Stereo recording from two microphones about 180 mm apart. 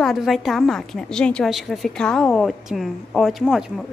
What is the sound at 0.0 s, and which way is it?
A woman's voice, centre (ahead or behind).